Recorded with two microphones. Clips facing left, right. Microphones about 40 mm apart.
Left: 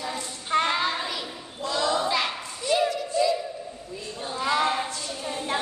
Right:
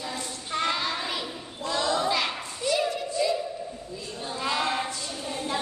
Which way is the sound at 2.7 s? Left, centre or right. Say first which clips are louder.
Left 3 dB; left.